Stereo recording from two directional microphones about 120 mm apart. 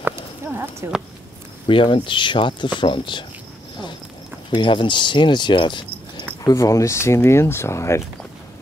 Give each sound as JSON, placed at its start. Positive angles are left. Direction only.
{"t": 0.0, "sound": "a sound", "side_deg": -20}
{"t": 1.7, "sound": "speech", "side_deg": 45}
{"t": 4.6, "sound": "speech", "side_deg": 40}
{"t": 6.4, "sound": "speech", "side_deg": 25}